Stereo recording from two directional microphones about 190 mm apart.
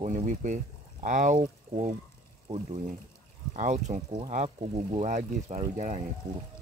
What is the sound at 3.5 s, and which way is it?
Speech, 40° right (ahead or behind).